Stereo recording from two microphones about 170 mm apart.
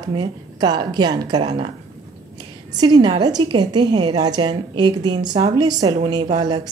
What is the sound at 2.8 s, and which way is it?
A woman's voice, 25° right (ahead or behind).